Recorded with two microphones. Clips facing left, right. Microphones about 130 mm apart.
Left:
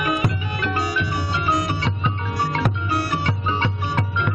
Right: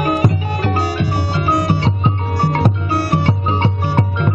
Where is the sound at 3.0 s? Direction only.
60° right (ahead or behind).